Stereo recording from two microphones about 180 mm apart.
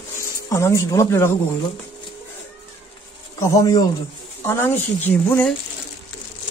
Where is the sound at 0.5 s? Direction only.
15° left (ahead or behind).